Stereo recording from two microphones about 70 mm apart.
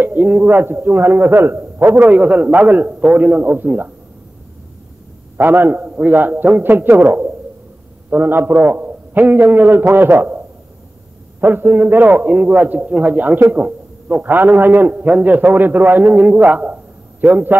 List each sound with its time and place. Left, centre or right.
0.0 s a man's voice: right
2.0 s a man's voice: right
5.4 s a man's voice: right
11.4 s a man's voice: right